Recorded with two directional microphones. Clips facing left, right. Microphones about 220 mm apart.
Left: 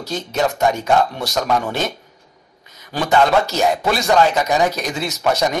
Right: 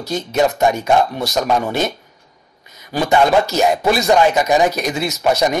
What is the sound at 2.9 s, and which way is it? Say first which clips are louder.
Speech: right 2 dB; 10° right (ahead or behind).